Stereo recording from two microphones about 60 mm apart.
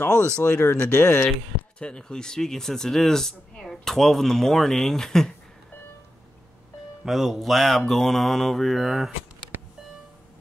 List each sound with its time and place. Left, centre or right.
0.1 s speech: left
0.6 s speech: left
1.8 s speech: centre
7.1 s mantra: centre